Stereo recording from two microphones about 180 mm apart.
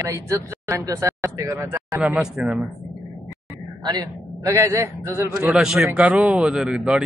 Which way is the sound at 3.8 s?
20° right (ahead or behind).